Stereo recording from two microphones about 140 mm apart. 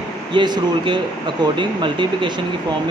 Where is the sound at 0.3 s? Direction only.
35° right (ahead or behind).